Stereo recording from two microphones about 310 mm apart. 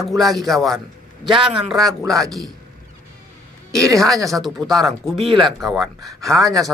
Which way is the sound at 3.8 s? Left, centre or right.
Centre.